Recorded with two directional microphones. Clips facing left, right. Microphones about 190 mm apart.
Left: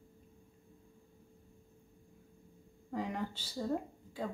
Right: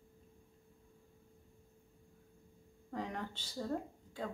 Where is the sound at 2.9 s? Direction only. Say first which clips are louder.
Left 4 dB; 5° left (ahead or behind).